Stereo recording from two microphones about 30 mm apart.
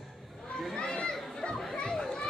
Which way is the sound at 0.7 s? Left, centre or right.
Left.